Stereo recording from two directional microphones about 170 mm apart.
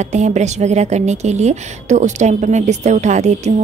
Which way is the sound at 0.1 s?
40° right (ahead or behind).